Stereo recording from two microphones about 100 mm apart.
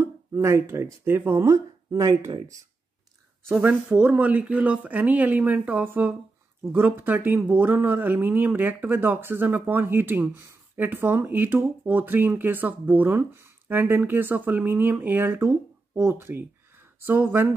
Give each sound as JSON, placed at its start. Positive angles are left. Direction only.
{"t": 0.0, "sound": "speech", "side_deg": -25}
{"t": 3.6, "sound": "speech", "side_deg": -15}